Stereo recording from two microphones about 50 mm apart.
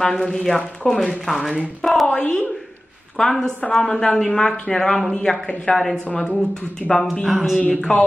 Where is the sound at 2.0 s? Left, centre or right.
Left.